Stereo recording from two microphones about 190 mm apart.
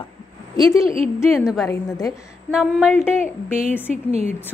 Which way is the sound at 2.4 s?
5° right (ahead or behind).